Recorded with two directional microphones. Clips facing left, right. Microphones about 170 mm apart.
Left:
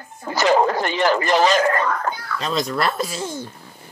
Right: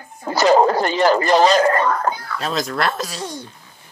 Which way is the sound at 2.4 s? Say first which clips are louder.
Left 3 dB; centre (ahead or behind).